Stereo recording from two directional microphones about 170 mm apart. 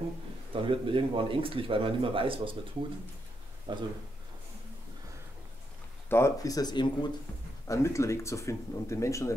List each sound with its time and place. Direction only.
0.5 s speech: 30° right (ahead or behind)
3.7 s speech: 30° right (ahead or behind)
6.0 s speech: 15° left (ahead or behind)